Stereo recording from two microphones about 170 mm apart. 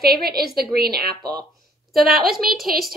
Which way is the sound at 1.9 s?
Centre (ahead or behind).